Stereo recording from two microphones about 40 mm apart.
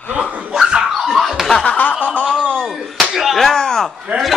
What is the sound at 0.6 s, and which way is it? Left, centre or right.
Dog, centre.